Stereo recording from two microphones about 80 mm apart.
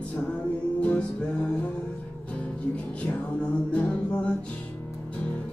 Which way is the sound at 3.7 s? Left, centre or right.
Centre.